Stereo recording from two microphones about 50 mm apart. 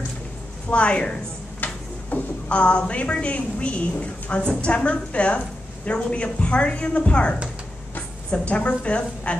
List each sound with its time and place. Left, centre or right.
0.7 s a woman's voice: left
1.6 s a sound: left
2.6 s a woman's voice: left